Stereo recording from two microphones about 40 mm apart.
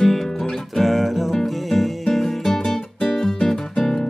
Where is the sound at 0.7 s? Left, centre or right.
Centre.